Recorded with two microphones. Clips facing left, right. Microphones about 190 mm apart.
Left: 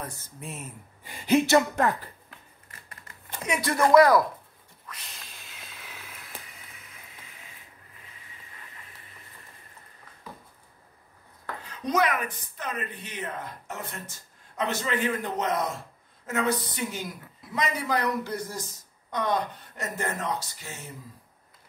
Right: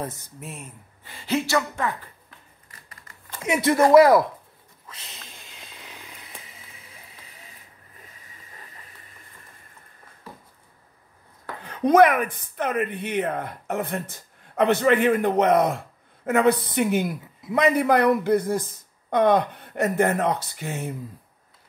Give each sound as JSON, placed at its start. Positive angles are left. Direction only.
{"t": 0.0, "sound": "speech", "side_deg": -20}
{"t": 0.4, "sound": "speech", "side_deg": 0}
{"t": 1.0, "sound": "speech", "side_deg": 15}
{"t": 3.4, "sound": "speech", "side_deg": -25}
{"t": 5.5, "sound": "vehicle", "side_deg": -15}
{"t": 6.1, "sound": "a sound", "side_deg": 0}
{"t": 11.6, "sound": "speech", "side_deg": -55}